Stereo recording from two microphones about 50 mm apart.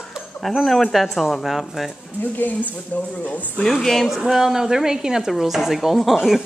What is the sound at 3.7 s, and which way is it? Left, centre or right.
Speech, centre.